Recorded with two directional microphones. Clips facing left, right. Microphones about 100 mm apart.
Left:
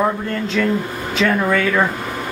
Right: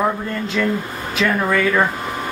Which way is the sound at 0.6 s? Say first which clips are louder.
Left 1 dB; 5° right (ahead or behind).